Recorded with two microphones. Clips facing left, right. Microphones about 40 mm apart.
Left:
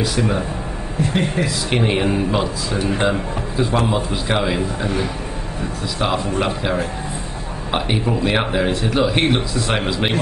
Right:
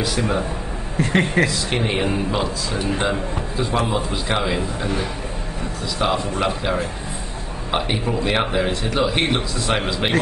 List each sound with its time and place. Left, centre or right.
0.0 s a man's voice: centre
1.4 s speech: right
1.7 s a man's voice: centre
5.9 s a man's voice: centre